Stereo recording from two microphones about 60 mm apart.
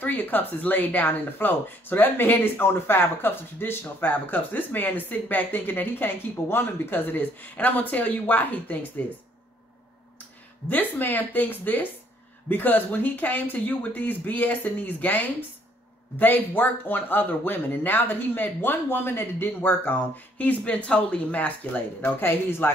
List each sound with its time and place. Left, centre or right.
0.0 s speech: left
10.7 s speech: left
22.2 s speech: left